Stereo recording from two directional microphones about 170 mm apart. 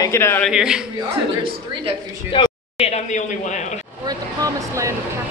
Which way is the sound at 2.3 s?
30° left (ahead or behind).